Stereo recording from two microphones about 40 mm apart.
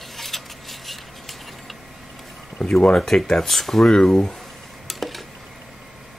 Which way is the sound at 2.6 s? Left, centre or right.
Centre.